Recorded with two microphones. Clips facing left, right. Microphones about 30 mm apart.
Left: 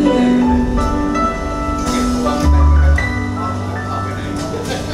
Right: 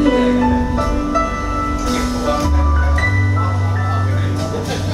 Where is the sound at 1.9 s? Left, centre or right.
Right.